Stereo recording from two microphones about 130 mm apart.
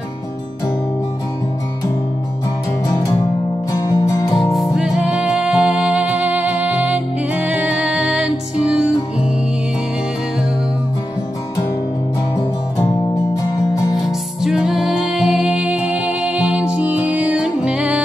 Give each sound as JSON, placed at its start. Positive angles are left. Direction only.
{"t": 3.7, "sound": "music", "side_deg": 25}
{"t": 4.6, "sound": "music", "side_deg": -5}
{"t": 14.0, "sound": "music", "side_deg": -5}